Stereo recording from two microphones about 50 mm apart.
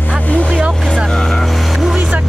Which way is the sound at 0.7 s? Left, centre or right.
Centre.